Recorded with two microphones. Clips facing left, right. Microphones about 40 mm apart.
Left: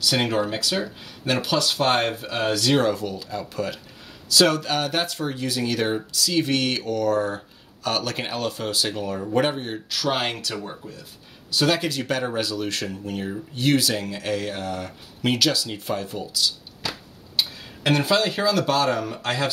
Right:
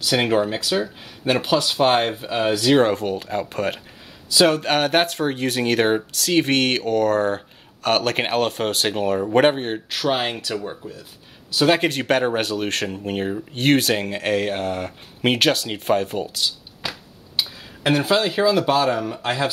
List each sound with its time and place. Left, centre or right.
0.0 s speech: right
2.9 s speech: right
4.3 s speech: right
4.6 s speech: right
10.6 s speech: centre
11.5 s speech: right
11.8 s speech: right
16.8 s a sound: right
17.4 s speech: centre